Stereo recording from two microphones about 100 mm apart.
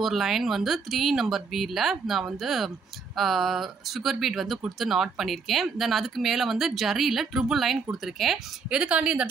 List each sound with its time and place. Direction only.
0.0 s speech: centre (ahead or behind)